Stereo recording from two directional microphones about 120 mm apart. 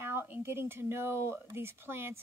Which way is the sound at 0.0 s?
15° right (ahead or behind).